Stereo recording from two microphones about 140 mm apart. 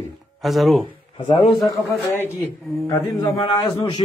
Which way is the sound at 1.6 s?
25° left (ahead or behind).